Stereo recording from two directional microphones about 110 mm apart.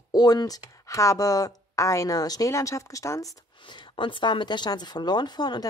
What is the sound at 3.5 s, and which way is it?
Speech, 45° left (ahead or behind).